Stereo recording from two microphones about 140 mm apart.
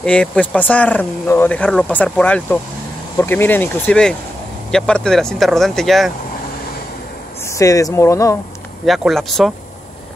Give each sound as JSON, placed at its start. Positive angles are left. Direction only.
{"t": 0.0, "sound": "speech", "side_deg": 5}
{"t": 7.4, "sound": "speech", "side_deg": 20}
{"t": 8.8, "sound": "speech", "side_deg": 0}